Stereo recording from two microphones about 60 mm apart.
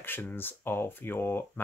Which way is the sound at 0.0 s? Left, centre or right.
Left.